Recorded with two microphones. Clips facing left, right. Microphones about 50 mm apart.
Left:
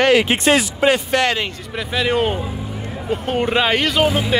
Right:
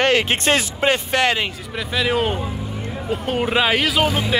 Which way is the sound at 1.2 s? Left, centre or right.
Centre.